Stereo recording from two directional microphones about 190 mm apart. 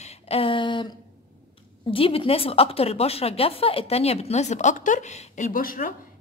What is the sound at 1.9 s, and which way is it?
A woman's voice, 30° left (ahead or behind).